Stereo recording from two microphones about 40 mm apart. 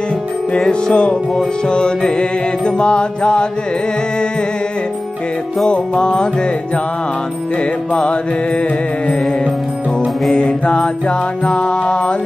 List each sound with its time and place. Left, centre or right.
0.6 s mantra: left
5.7 s mantra: left
7.9 s mantra: left
10.3 s mantra: left